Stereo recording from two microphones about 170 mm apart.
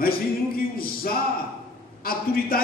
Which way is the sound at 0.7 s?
60° left (ahead or behind).